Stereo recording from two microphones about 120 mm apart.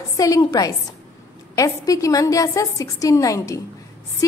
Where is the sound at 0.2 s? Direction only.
30° left (ahead or behind).